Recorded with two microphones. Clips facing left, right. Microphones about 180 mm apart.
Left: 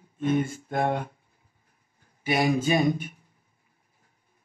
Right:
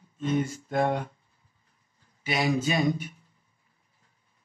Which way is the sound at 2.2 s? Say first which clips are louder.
Left 3 dB; 50° left (ahead or behind).